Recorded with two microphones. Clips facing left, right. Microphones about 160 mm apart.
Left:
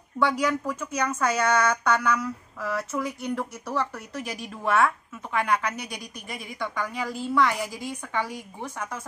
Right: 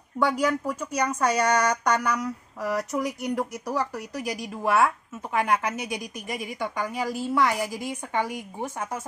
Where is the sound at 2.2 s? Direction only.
15° right (ahead or behind).